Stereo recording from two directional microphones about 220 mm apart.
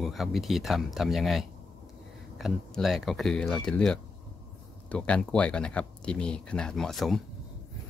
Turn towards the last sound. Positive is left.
turn(degrees=0)  # may be behind; listen again after turning